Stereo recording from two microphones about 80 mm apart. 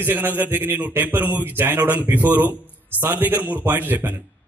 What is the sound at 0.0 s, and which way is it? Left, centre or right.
A man's voice, right.